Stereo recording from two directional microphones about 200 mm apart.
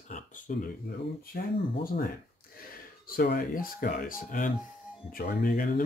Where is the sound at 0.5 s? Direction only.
40° left (ahead or behind).